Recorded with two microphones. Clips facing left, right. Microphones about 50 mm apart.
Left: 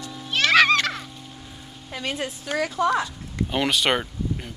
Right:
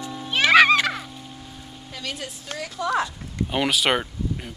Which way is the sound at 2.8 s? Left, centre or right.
Left.